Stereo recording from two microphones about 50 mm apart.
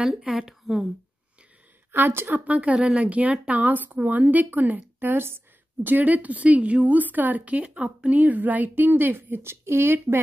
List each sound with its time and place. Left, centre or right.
0.3 s a woman's voice: centre
1.9 s a woman's voice: right